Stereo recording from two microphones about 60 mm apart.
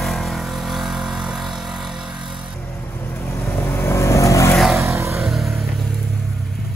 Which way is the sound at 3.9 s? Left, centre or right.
Left.